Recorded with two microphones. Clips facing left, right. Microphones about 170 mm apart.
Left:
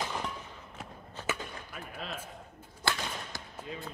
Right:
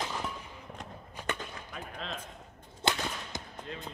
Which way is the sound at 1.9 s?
5° left (ahead or behind).